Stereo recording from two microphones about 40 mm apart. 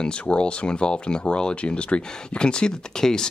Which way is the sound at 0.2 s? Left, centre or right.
Left.